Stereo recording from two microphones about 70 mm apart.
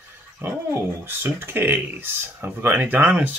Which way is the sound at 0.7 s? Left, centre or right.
Right.